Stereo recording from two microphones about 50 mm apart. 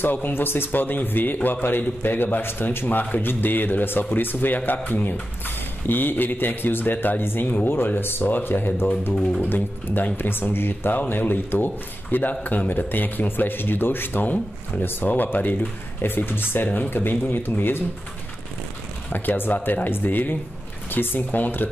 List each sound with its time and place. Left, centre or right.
0.0 s a man's voice: left
19.1 s a man's voice: left